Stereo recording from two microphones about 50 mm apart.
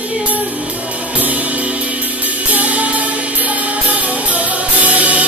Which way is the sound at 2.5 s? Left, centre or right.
Right.